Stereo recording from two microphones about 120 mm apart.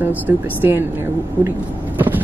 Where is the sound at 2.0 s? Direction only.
15° right (ahead or behind).